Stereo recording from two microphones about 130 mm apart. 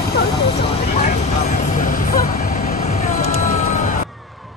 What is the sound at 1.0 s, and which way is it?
Vehicle, 65° left (ahead or behind).